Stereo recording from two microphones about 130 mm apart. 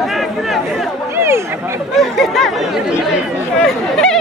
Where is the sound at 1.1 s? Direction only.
20° right (ahead or behind).